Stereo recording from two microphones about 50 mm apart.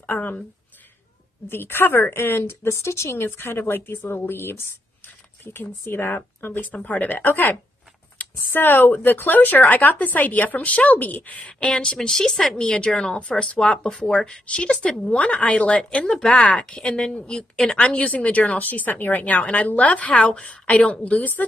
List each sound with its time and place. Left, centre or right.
0.0 s a sound: left
1.5 s speech: left
3.3 s a woman's voice: left